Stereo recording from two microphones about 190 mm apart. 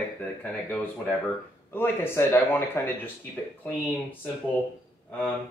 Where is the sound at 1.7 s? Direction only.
10° left (ahead or behind).